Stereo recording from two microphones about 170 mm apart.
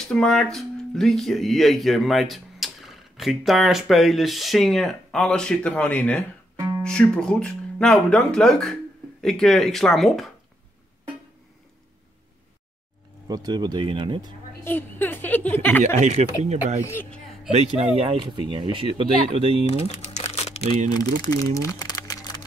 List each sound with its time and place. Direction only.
0.0 s speech: 5° left (ahead or behind)
13.3 s speech: 25° right (ahead or behind)
14.6 s a woman's voice: 10° left (ahead or behind)
15.8 s speech: 40° right (ahead or behind)
16.8 s speech: 15° left (ahead or behind)
17.5 s speech: 40° right (ahead or behind)
19.8 s crumpling: 40° left (ahead or behind)
20.9 s speech: 20° left (ahead or behind)
21.5 s crumpling: 20° left (ahead or behind)